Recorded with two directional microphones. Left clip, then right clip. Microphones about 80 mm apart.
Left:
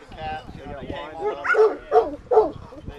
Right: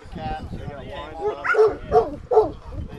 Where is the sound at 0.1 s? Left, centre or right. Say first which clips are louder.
Even; right.